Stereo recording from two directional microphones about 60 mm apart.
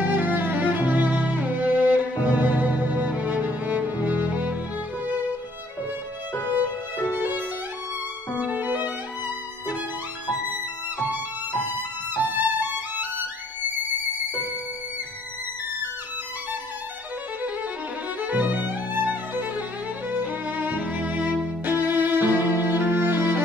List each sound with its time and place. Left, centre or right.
0.1 s music: right
8.4 s violin: right
12.3 s music: right
18.2 s music: right